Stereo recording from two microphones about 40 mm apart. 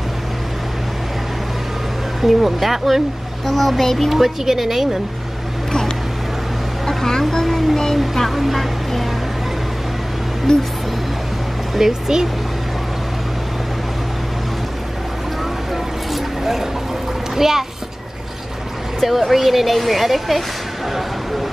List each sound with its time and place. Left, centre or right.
2.2 s speech: centre
3.4 s a child's voice: centre
4.1 s a woman's voice: centre
5.7 s vehicle: centre
6.9 s a sound: centre
8.0 s music: centre
10.5 s a child's voice: centre
11.7 s a woman's voice: centre
15.7 s vehicle: centre
17.4 s a woman's voice: centre
18.9 s speech: centre